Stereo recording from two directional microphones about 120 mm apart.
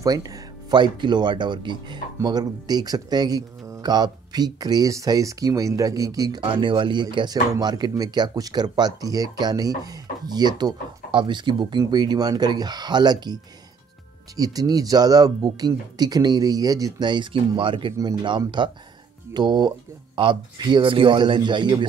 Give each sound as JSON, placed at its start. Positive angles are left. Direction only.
{"t": 0.0, "sound": "speech", "side_deg": -30}
{"t": 6.5, "sound": "speech", "side_deg": -45}